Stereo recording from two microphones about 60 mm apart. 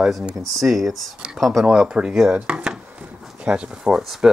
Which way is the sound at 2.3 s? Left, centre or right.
Centre.